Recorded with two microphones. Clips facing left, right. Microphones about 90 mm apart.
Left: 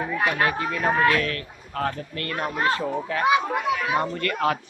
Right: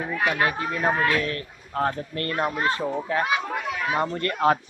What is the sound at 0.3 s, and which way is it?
Speech, 15° right (ahead or behind).